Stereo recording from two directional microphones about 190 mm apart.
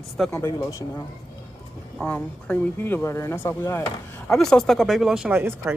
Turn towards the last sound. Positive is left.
turn(degrees=-10)  # may be behind; listen again after turning